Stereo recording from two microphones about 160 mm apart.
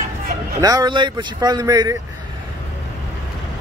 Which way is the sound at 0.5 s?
25° right (ahead or behind).